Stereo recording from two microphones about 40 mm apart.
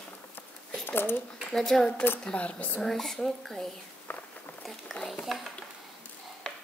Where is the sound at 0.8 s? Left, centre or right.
Left.